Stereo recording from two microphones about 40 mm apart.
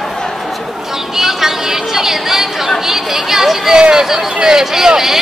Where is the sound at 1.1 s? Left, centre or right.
Centre.